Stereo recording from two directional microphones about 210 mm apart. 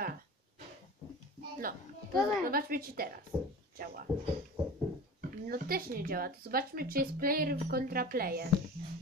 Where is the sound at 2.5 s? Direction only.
45° right (ahead or behind).